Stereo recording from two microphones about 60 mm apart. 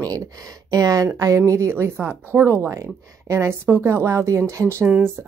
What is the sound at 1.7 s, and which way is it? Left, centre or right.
Speech, right.